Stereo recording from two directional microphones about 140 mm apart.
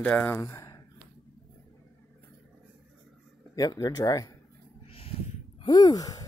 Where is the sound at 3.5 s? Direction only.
25° left (ahead or behind).